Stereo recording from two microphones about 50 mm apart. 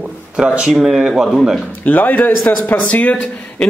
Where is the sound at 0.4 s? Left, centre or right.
Centre.